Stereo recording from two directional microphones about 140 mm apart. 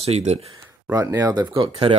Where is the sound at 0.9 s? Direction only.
25° right (ahead or behind).